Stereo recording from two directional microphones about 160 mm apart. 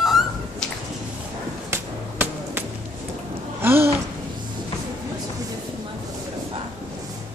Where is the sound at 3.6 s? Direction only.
15° right (ahead or behind).